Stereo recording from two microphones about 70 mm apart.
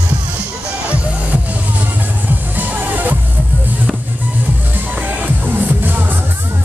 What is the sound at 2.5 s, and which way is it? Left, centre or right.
Music, right.